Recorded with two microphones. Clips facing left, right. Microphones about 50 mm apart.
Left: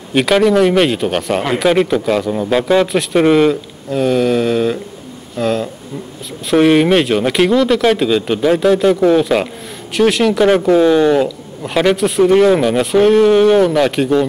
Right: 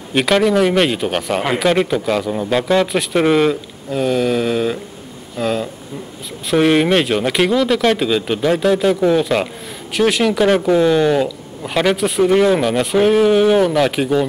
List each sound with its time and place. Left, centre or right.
0.1 s speech: centre